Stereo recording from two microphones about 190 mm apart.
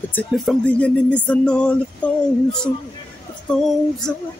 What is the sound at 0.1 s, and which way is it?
Speech, 5° left (ahead or behind).